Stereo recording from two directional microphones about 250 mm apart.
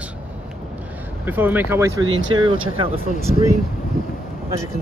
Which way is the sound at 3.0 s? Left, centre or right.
Left.